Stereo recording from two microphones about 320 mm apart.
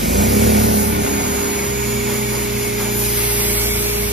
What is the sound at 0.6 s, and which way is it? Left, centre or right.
Vehicle, right.